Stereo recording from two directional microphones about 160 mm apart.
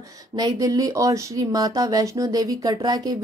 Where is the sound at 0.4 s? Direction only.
25° right (ahead or behind).